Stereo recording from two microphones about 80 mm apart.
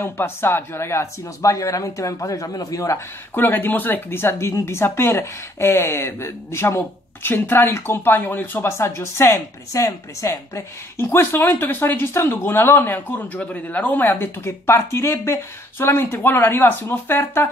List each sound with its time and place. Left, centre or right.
0.0 s speech: left
3.3 s speech: left
11.1 s speech: left